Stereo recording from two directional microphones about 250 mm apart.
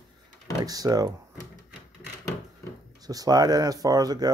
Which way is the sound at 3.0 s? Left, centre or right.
Centre.